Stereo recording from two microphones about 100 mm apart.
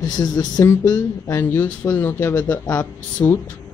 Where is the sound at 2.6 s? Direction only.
35° left (ahead or behind).